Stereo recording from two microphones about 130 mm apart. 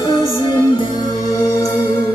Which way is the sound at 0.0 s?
25° left (ahead or behind).